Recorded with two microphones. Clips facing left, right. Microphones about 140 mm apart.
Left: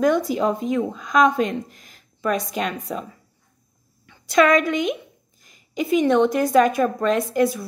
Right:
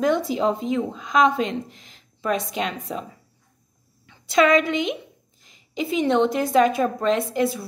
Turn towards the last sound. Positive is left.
turn(degrees=-25)  # may be behind; listen again after turning